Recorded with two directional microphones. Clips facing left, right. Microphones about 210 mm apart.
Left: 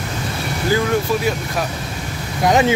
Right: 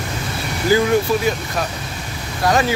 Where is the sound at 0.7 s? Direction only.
10° right (ahead or behind).